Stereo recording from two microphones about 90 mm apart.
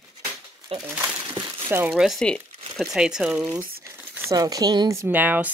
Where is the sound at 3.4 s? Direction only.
30° right (ahead or behind).